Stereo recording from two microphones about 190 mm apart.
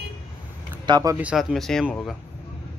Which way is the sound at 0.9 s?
20° right (ahead or behind).